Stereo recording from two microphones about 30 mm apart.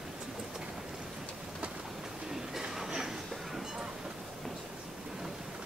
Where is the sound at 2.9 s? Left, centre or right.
Centre.